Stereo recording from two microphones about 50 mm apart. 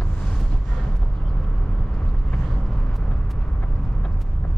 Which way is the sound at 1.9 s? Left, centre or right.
Centre.